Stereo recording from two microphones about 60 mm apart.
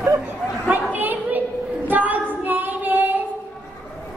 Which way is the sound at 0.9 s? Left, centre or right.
Right.